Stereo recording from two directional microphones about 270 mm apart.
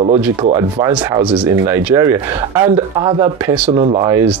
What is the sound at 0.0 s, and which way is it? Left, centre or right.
Speech, right.